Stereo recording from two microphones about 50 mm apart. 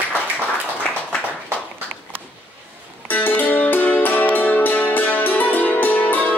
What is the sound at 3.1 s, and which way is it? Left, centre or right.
Music, left.